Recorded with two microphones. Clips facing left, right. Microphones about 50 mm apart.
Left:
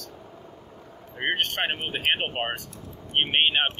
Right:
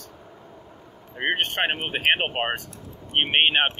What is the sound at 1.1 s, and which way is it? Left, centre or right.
Speech, centre.